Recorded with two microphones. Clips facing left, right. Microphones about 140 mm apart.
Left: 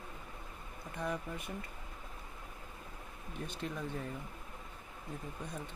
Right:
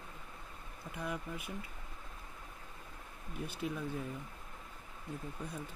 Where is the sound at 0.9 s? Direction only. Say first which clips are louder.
Left 2 dB; 5° right (ahead or behind).